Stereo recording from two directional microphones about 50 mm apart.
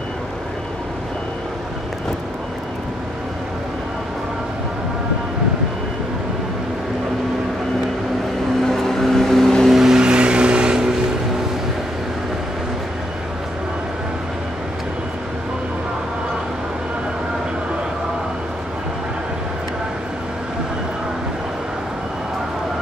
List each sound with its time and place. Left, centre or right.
8.6 s vehicle: centre
9.8 s music: centre